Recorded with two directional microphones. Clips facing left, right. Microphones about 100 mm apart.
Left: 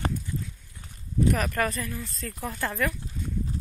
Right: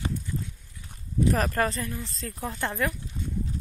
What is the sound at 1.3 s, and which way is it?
Speech, 35° right (ahead or behind).